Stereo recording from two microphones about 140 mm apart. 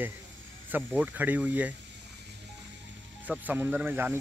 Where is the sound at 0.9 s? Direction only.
10° right (ahead or behind).